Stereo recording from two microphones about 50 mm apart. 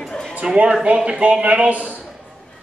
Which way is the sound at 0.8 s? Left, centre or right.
Right.